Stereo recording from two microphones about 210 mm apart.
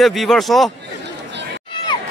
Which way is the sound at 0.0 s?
Centre (ahead or behind).